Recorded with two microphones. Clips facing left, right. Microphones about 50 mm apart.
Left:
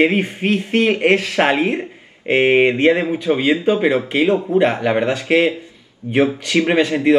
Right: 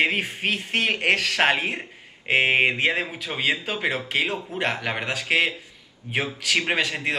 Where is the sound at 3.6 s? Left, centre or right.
Centre.